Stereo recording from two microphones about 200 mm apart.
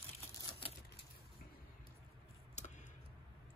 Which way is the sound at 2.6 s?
35° left (ahead or behind).